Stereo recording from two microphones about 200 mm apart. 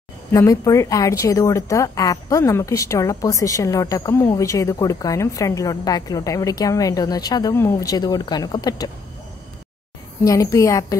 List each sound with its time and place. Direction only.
0.3 s speech: 15° left (ahead or behind)
10.2 s speech: 15° left (ahead or behind)